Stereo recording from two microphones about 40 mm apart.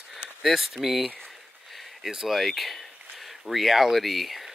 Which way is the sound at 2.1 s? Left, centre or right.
Centre.